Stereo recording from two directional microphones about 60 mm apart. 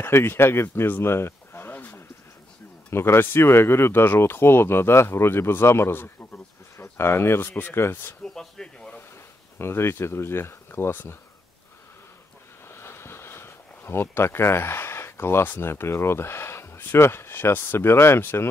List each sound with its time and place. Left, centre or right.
0.0 s speech: left
2.9 s speech: left
8.4 s a sound: centre
9.6 s speech: left
12.6 s speech: left